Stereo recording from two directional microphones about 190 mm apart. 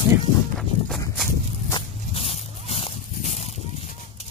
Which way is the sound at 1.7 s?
30° left (ahead or behind).